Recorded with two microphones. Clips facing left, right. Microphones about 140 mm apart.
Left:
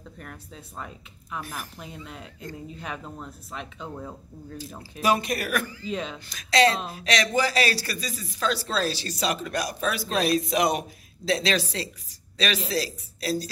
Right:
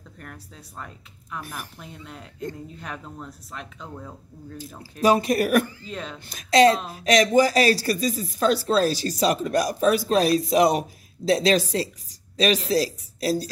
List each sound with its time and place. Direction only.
0.2 s speech: 5° left (ahead or behind)
5.0 s speech: 40° right (ahead or behind)
5.9 s speech: 5° left (ahead or behind)
6.2 s a man's voice: 45° right (ahead or behind)